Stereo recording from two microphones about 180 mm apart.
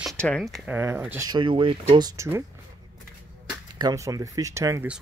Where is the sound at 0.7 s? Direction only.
15° right (ahead or behind).